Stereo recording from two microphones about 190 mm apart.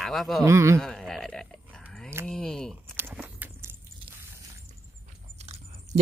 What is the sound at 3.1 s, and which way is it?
Walk, 5° right (ahead or behind).